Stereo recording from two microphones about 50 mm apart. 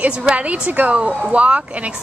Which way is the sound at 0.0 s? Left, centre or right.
Right.